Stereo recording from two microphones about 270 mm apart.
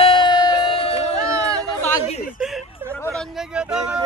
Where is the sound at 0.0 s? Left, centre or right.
Centre.